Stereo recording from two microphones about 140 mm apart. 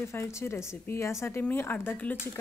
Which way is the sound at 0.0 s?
20° left (ahead or behind).